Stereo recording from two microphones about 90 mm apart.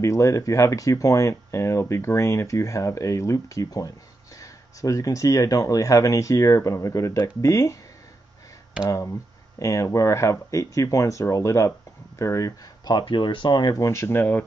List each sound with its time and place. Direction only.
0.0 s speech: 35° left (ahead or behind)
9.6 s speech: 35° left (ahead or behind)
12.9 s speech: 60° left (ahead or behind)
13.7 s speech: 35° left (ahead or behind)